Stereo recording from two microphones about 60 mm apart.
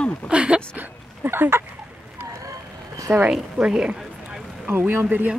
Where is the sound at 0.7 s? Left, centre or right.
Right.